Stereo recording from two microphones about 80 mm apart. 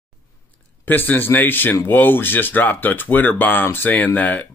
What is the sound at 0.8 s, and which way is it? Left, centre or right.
Speech, left.